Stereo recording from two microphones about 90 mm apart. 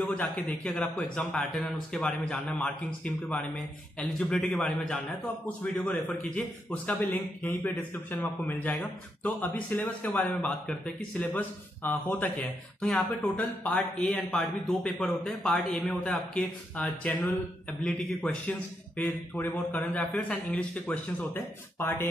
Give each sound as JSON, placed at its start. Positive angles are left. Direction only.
{"t": 0.0, "sound": "a man's voice", "side_deg": 15}
{"t": 5.8, "sound": "a man's voice", "side_deg": 15}
{"t": 12.8, "sound": "a man's voice", "side_deg": 5}
{"t": 19.0, "sound": "speech", "side_deg": 20}